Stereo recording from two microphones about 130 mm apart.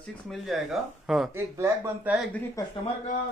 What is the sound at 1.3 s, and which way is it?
Speech, 15° right (ahead or behind).